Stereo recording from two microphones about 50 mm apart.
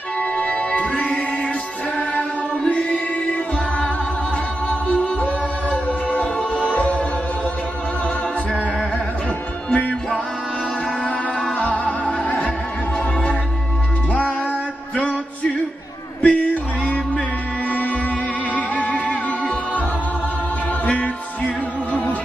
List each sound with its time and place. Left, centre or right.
0.4 s music: left
2.7 s music: left
4.6 s music: left
11.5 s music: left
15.0 s music: left
18.5 s music: left
20.8 s music: left